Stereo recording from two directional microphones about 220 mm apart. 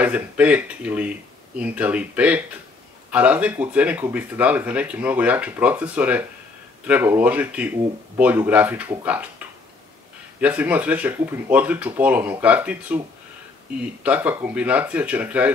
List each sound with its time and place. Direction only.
0.0 s speech: 5° right (ahead or behind)
10.4 s speech: 5° right (ahead or behind)
14.0 s speech: 5° right (ahead or behind)